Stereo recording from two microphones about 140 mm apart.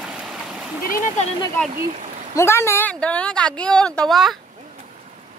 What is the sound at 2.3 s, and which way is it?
Speech, 20° left (ahead or behind).